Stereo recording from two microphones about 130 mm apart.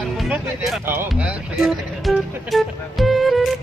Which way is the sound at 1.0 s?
5° right (ahead or behind).